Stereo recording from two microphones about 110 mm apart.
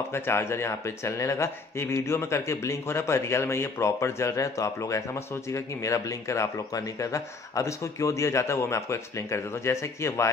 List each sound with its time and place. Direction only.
0.1 s a man's voice: 25° left (ahead or behind)